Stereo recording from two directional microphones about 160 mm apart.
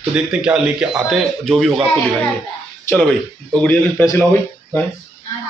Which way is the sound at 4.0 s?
15° left (ahead or behind).